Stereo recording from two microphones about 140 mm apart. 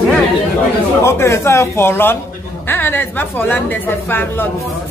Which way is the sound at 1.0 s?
20° left (ahead or behind).